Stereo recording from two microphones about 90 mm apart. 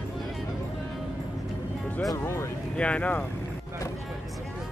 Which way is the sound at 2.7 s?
15° left (ahead or behind).